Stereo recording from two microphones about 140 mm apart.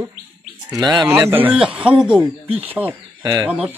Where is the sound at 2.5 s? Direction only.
45° right (ahead or behind).